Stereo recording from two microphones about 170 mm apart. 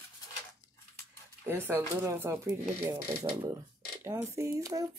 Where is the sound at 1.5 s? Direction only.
15° right (ahead or behind).